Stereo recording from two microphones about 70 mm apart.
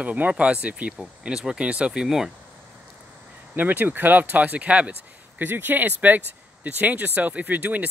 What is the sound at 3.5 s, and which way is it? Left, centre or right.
Speech, right.